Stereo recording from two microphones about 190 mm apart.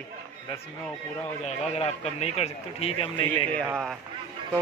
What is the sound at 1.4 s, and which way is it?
A man's voice, 35° left (ahead or behind).